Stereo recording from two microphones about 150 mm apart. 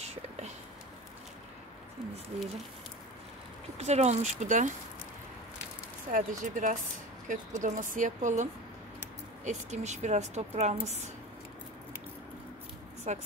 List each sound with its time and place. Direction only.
0.0 s whispering: 45° right (ahead or behind)
3.7 s a woman's voice: 45° right (ahead or behind)
6.1 s a woman's voice: 60° right (ahead or behind)
13.1 s a woman's voice: 50° right (ahead or behind)